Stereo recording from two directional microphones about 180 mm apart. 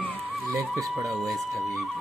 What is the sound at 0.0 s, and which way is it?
Music, 10° left (ahead or behind).